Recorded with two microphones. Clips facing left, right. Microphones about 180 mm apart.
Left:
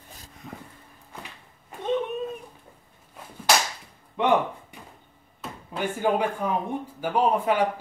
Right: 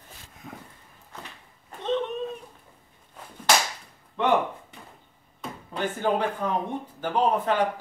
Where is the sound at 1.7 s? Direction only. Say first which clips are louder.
Left 1 dB; 10° left (ahead or behind).